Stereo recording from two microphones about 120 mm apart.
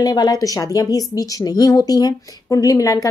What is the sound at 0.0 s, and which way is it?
A woman's voice, 35° left (ahead or behind).